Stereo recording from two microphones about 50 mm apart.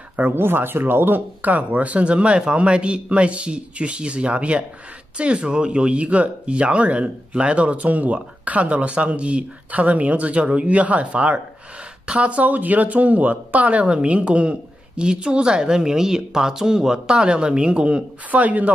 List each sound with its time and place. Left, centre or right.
0.3 s speech: right
18.3 s speech: right